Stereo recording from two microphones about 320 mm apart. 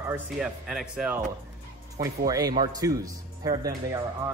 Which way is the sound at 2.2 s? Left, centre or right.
Centre.